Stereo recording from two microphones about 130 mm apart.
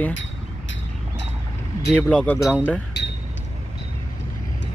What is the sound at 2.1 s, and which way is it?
Speech, 10° left (ahead or behind).